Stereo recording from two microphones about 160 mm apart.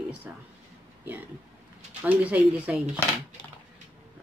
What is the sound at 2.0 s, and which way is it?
Speech, 10° right (ahead or behind).